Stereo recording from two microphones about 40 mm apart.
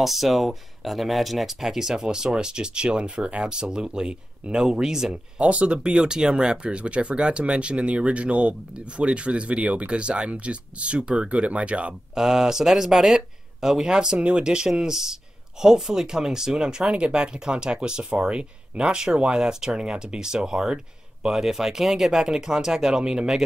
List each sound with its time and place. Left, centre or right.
0.0 s speech: centre
5.1 s speech: right
12.2 s speech: centre